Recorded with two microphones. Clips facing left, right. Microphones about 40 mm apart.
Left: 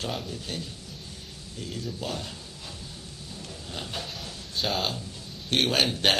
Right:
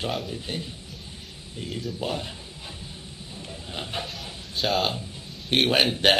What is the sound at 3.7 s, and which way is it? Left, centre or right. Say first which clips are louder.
Speech: right 3 dB; right.